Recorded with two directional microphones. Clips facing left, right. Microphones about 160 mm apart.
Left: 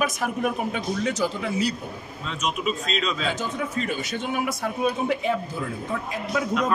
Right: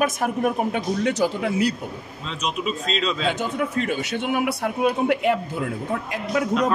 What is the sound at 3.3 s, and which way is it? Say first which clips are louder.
A man's voice: right 4 dB; 65° right (ahead or behind).